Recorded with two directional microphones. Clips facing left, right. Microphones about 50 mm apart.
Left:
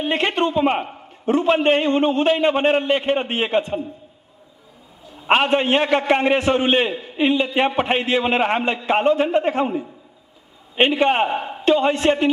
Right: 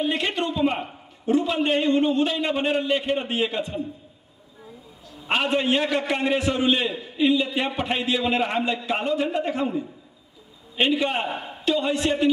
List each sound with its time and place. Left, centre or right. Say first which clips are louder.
0.0 s a man's voice: left 5 dB; left
5.2 s a man's voice: left 6 dB; left
11.2 s a man's voice: left 6 dB; left
11.6 s a man's voice: left 6 dB; left